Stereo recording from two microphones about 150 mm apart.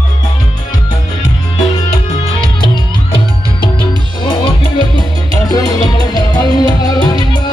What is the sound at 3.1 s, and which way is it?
Music, 35° left (ahead or behind).